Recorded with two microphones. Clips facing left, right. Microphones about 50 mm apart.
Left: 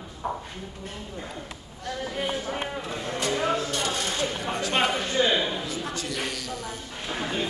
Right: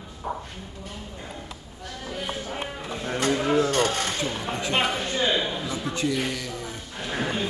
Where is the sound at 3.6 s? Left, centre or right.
Right.